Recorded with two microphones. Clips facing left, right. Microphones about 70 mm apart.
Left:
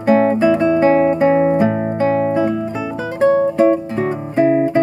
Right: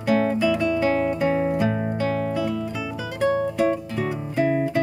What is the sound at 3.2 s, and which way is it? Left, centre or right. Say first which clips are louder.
Guitar: left 8 dB; left.